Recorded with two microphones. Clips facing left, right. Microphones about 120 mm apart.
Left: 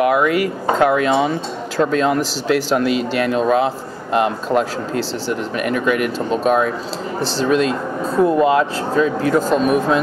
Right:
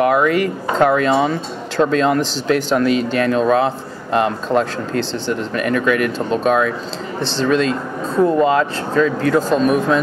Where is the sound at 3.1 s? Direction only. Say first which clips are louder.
Even; 5° left (ahead or behind).